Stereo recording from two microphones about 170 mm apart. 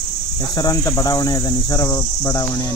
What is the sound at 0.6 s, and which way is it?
Cricket, 20° left (ahead or behind).